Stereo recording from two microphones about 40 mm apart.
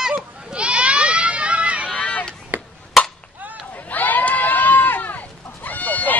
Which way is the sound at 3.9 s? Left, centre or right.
Left.